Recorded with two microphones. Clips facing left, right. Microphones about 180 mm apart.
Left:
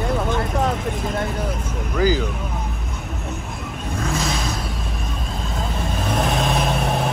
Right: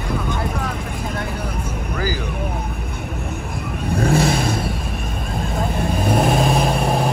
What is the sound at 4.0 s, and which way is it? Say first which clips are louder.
Vehicle: right 7 dB; 60° right (ahead or behind).